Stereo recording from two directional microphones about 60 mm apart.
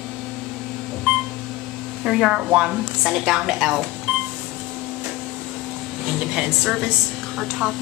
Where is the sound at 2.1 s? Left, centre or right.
Centre.